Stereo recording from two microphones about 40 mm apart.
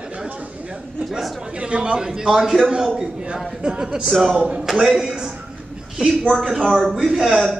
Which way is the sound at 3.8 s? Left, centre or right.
Right.